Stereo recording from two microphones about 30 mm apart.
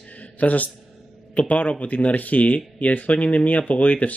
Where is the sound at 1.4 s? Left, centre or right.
Left.